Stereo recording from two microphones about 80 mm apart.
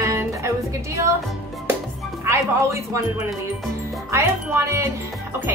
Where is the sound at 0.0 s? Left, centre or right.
Right.